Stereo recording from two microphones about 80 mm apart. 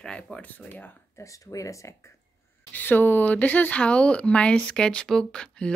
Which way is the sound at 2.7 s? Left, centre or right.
Left.